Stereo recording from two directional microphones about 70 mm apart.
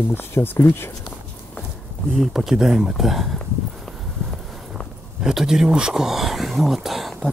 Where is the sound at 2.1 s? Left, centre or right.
Centre.